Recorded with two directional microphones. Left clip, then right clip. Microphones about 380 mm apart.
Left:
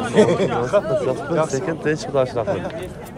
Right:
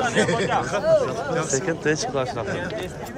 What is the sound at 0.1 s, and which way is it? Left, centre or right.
Speech, centre.